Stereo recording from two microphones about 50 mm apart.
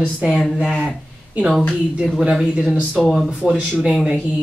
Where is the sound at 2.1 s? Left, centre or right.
Centre.